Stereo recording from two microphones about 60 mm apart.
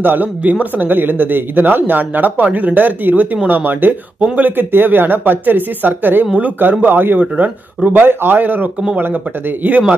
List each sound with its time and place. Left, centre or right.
0.0 s speech: right